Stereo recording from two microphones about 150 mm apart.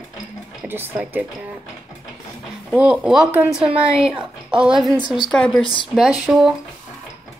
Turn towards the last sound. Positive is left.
turn(degrees=-5)  # may be behind; listen again after turning